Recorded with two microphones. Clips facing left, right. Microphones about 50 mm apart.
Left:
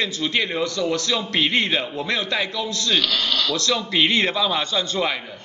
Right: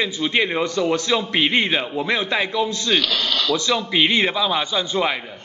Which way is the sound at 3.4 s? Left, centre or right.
Centre.